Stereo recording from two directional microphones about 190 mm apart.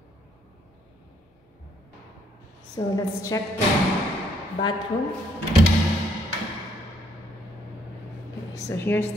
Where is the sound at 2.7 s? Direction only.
20° left (ahead or behind).